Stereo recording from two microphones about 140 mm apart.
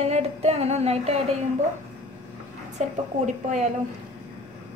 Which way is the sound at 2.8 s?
55° right (ahead or behind).